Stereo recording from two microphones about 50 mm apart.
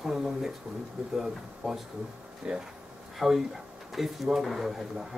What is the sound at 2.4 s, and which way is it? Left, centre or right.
Speech, centre.